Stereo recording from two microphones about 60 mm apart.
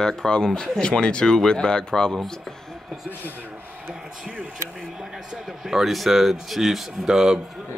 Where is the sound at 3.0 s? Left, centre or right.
Left.